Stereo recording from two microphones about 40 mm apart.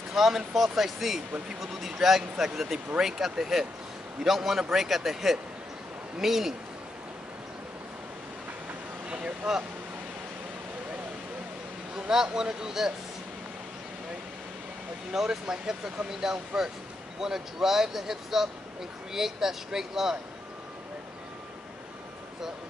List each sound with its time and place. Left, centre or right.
0.1 s speech: centre
9.1 s speech: right
11.9 s speech: centre
15.1 s speech: centre